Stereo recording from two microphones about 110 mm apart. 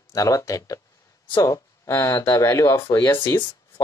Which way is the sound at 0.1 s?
30° left (ahead or behind).